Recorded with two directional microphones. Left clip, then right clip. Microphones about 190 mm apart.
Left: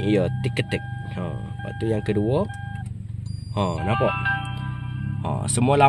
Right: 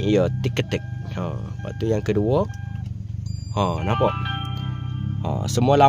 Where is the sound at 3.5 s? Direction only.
5° right (ahead or behind).